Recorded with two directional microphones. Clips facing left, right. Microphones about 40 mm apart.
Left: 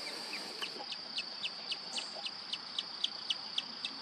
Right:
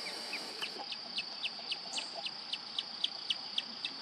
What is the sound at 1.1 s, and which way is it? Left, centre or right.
Bird, centre.